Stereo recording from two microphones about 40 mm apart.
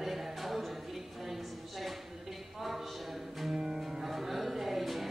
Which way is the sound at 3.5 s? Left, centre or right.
Centre.